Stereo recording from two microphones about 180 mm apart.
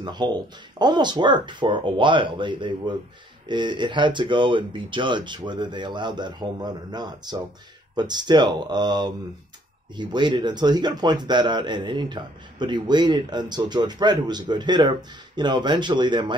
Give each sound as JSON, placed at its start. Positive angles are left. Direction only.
{"t": 0.0, "sound": "speech", "side_deg": -25}